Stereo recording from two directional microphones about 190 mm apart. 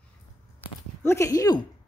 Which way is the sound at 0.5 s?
15° left (ahead or behind).